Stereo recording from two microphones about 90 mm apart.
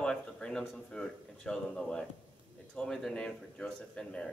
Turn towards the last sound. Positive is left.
turn(degrees=10)  # may be behind; listen again after turning